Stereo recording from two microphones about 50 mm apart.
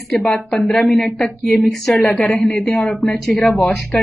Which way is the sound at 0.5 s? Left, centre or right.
Centre.